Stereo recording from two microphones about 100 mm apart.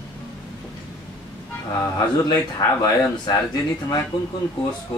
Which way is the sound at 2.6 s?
40° left (ahead or behind).